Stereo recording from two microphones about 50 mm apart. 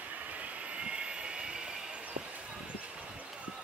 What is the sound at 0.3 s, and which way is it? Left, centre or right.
Vehicle, right.